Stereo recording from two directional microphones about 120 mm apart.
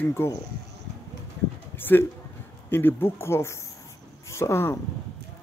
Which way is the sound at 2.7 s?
20° left (ahead or behind).